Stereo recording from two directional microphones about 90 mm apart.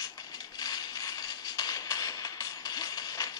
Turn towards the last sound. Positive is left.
turn(degrees=45)  # may be behind; listen again after turning